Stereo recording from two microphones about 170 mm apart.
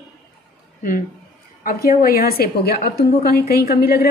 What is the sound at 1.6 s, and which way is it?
A woman's voice, 60° left (ahead or behind).